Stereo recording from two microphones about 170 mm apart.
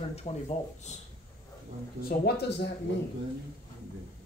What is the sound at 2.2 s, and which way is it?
Speech, 75° left (ahead or behind).